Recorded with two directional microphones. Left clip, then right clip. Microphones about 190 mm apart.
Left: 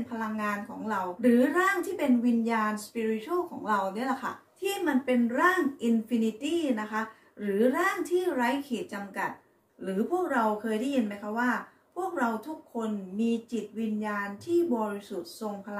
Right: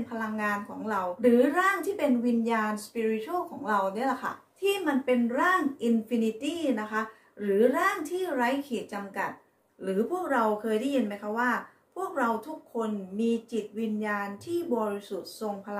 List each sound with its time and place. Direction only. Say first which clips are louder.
0.1 s a child's voice: right 2 dB; 20° right (ahead or behind)
12.7 s a child's voice: right 2 dB; 20° right (ahead or behind)